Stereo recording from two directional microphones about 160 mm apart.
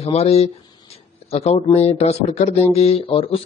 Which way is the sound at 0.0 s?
40° left (ahead or behind).